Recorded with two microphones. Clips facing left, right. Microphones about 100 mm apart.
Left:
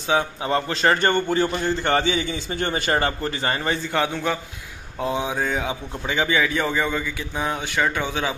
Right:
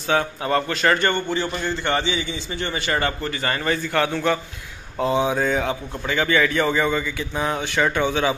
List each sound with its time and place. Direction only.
0.1 s a man's voice: 15° left (ahead or behind)
4.9 s a man's voice: centre (ahead or behind)
6.0 s a man's voice: 15° left (ahead or behind)